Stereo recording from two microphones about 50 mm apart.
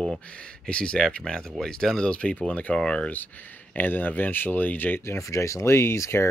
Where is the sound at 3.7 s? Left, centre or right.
Left.